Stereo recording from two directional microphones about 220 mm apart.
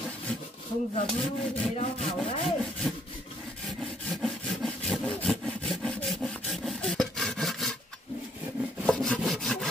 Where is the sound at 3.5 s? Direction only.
Centre (ahead or behind).